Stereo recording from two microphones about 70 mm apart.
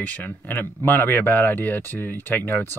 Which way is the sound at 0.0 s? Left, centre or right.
Left.